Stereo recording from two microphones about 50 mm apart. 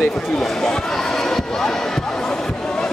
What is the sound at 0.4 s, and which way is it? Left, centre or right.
Speech, centre.